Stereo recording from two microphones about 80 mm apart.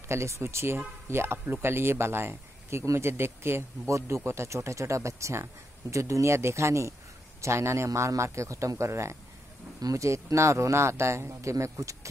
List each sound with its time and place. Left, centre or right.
0.1 s speech: right